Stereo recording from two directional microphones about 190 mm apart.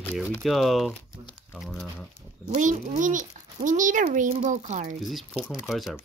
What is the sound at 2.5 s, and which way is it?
A child's voice, 40° right (ahead or behind).